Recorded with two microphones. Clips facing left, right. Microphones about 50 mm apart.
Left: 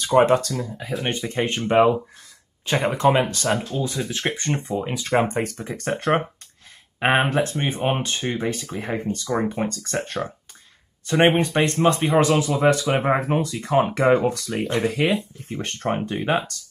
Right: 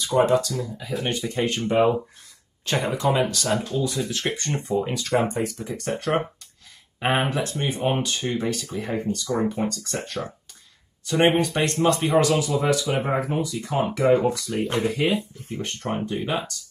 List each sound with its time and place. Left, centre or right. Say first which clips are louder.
0.0 s speech: left 3 dB; left
0.5 s speech: left 1 dB; left
2.8 s speech: left 4 dB; left; by 5.0 s centre
5.3 s speech: left 1 dB; left
14.3 s speech: left 1 dB; left
15.8 s speech: left 3 dB; left